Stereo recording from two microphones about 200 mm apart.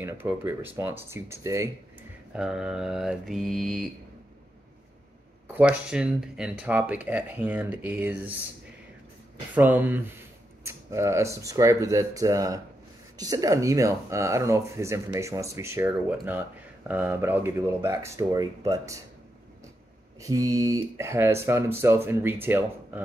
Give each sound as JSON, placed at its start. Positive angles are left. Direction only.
{"t": 0.0, "sound": "speech", "side_deg": -10}
{"t": 2.3, "sound": "mantra", "side_deg": -5}
{"t": 5.6, "sound": "speech", "side_deg": -5}
{"t": 9.6, "sound": "speech", "side_deg": -10}
{"t": 20.2, "sound": "speech", "side_deg": -15}